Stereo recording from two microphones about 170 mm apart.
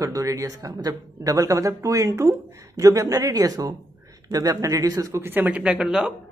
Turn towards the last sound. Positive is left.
turn(degrees=-5)  # may be behind; listen again after turning